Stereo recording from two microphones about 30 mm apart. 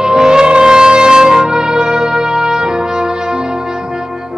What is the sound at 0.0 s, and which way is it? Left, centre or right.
Wind instrument, right.